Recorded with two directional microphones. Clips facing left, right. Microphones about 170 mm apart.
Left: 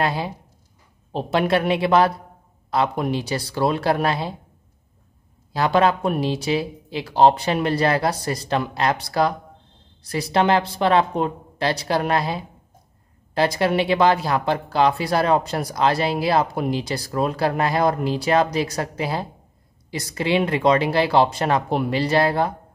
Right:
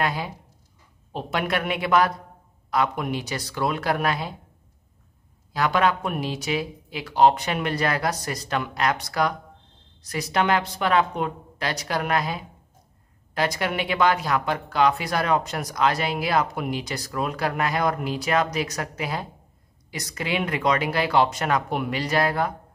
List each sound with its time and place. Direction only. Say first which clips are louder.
0.0 s speech: left 3 dB; 30° left (ahead or behind)
5.5 s speech: left 4 dB; 30° left (ahead or behind)